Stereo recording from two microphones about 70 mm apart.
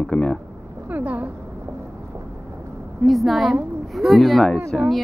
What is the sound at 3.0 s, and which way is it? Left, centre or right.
A woman's voice, centre.